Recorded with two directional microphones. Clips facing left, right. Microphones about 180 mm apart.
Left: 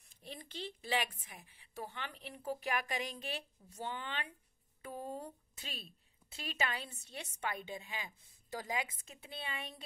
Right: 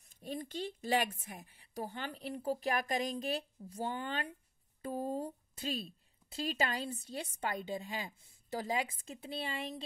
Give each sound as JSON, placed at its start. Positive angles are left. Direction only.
{"t": 0.2, "sound": "a woman's voice", "side_deg": -45}